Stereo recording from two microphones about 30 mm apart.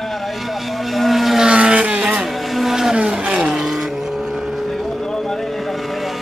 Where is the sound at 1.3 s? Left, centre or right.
Right; by 3.8 s centre.